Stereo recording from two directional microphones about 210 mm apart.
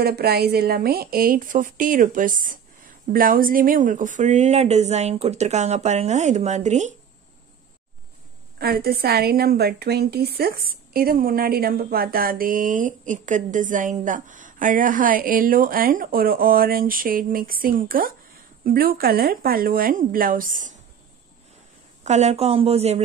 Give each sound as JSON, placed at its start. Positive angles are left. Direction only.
{"t": 0.0, "sound": "speech", "side_deg": -50}
{"t": 8.5, "sound": "speech", "side_deg": -45}
{"t": 22.0, "sound": "a woman's voice", "side_deg": -35}